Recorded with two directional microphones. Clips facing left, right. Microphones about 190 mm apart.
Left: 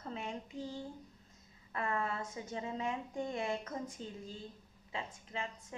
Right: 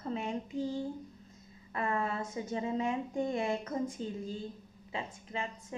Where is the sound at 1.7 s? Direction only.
15° right (ahead or behind).